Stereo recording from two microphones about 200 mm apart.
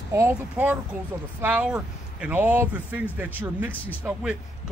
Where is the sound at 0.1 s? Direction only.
15° right (ahead or behind).